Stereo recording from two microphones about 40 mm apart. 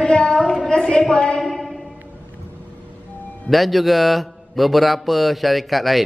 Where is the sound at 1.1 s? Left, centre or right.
Left.